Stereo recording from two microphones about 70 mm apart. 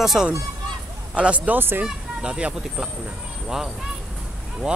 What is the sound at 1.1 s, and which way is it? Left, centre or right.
Speech, centre.